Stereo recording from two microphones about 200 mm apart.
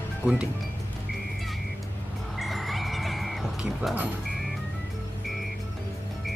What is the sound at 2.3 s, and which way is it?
Music, centre (ahead or behind).